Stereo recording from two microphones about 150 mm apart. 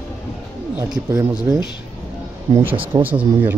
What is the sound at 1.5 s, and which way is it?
Speech, 15° right (ahead or behind).